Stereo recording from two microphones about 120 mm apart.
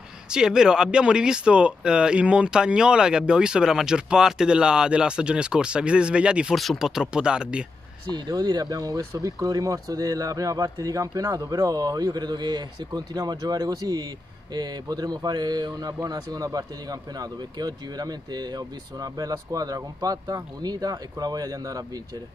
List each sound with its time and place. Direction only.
0.3 s speech: 5° right (ahead or behind)
8.1 s speech: 35° right (ahead or behind)